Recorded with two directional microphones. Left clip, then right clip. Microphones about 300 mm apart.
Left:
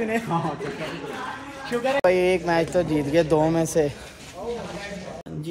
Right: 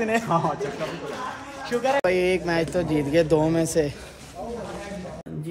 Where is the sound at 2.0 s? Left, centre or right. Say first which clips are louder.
Left 2 dB; centre.